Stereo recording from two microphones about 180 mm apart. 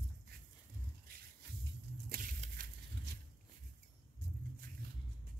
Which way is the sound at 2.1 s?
50° right (ahead or behind).